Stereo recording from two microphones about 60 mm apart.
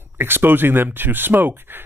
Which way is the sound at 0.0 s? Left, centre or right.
Right.